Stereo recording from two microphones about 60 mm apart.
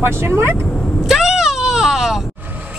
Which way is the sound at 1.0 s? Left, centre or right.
Centre.